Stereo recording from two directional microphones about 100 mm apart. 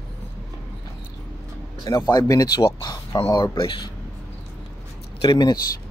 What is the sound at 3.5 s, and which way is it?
Speech, 60° left (ahead or behind).